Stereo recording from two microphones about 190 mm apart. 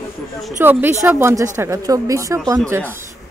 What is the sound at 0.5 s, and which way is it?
Speech, 10° right (ahead or behind).